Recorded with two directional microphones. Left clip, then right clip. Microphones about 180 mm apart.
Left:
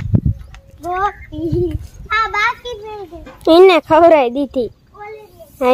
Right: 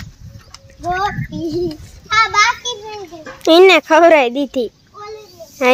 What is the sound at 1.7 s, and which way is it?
A child's voice, 20° right (ahead or behind).